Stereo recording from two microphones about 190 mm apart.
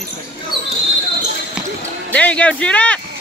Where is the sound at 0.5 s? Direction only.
25° left (ahead or behind).